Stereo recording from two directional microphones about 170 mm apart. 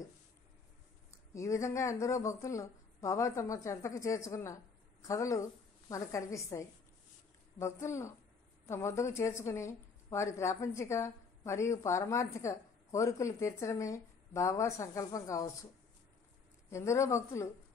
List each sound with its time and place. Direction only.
1.1 s a woman's voice: 15° left (ahead or behind)
16.7 s a woman's voice: 15° left (ahead or behind)